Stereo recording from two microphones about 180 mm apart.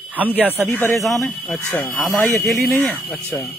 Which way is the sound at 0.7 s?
15° left (ahead or behind).